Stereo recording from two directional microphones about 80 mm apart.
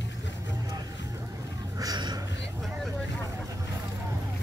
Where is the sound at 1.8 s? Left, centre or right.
Right.